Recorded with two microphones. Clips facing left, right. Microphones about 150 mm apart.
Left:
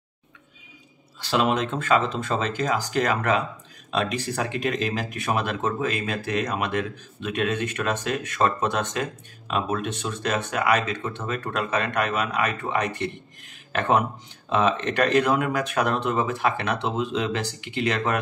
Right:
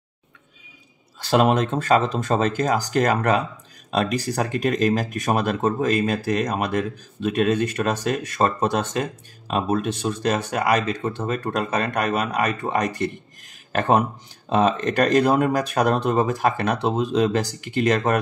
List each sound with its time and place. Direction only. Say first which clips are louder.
1.2 s speech: right 4 dB; 45° right (ahead or behind)